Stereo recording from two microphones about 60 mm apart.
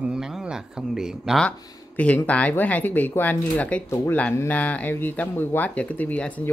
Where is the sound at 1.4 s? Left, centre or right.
Left.